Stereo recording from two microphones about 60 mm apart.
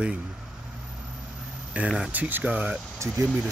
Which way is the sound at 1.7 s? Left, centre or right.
Right.